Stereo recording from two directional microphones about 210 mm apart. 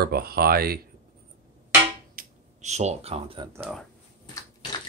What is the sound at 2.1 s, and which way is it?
Finger snapping, 35° right (ahead or behind).